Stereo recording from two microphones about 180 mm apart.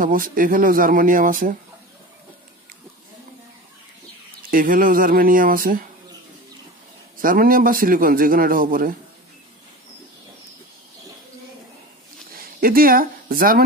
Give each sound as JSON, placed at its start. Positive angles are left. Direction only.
{"t": 0.0, "sound": "a man's voice", "side_deg": -50}
{"t": 4.4, "sound": "a man's voice", "side_deg": -50}
{"t": 7.2, "sound": "a man's voice", "side_deg": -50}
{"t": 12.4, "sound": "speech", "side_deg": -55}